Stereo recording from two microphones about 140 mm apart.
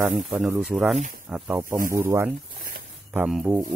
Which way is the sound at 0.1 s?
Centre (ahead or behind).